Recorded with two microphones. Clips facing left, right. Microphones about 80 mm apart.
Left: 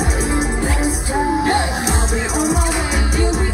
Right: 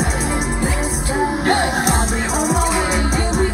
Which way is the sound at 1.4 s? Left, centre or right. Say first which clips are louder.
Right 1 dB; right.